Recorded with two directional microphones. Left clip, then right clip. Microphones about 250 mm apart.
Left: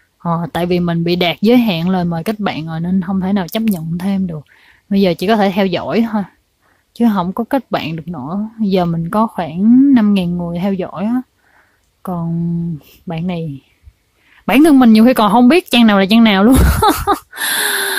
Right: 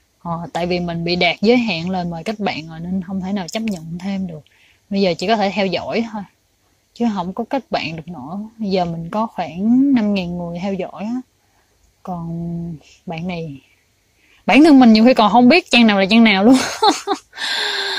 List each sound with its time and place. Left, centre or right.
0.2 s speech: centre